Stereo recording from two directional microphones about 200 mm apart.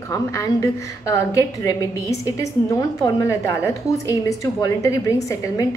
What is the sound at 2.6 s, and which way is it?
A woman's voice, 15° left (ahead or behind).